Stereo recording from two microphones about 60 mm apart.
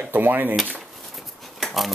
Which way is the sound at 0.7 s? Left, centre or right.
Centre.